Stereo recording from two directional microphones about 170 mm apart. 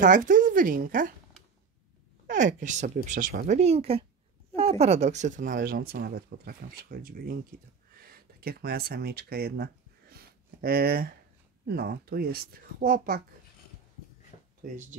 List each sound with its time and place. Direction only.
0.0 s speech: 50° right (ahead or behind)
2.2 s speech: 45° right (ahead or behind)
3.4 s speech: 40° right (ahead or behind)
5.6 s speech: 60° right (ahead or behind)
14.6 s speech: 50° right (ahead or behind)